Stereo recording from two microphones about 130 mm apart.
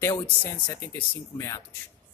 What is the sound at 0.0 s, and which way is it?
Speech, 15° left (ahead or behind).